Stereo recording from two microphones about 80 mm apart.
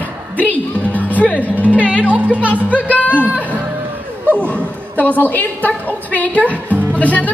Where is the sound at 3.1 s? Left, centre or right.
Right.